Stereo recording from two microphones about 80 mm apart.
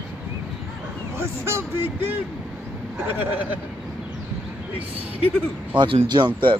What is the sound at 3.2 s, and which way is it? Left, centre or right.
Speech, right.